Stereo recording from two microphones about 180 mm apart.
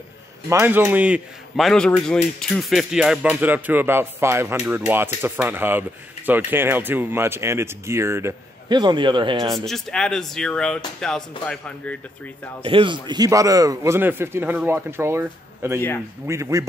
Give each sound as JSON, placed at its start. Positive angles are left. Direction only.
{"t": 0.5, "sound": "a man's voice", "side_deg": -10}
{"t": 9.7, "sound": "speech", "side_deg": 5}
{"t": 12.6, "sound": "a man's voice", "side_deg": -30}